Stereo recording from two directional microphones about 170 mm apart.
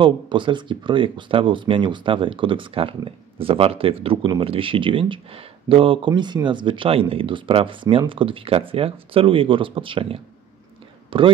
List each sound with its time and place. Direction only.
0.0 s speech: 30° right (ahead or behind)